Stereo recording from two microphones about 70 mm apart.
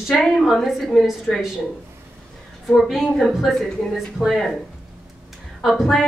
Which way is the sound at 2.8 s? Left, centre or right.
Centre.